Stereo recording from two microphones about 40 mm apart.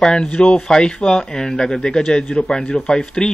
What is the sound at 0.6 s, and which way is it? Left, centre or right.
Speech, centre.